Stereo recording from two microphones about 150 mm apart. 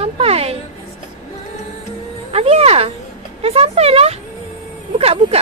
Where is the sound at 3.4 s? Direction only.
40° right (ahead or behind).